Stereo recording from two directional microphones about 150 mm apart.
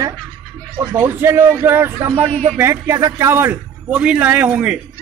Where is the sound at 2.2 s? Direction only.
45° right (ahead or behind).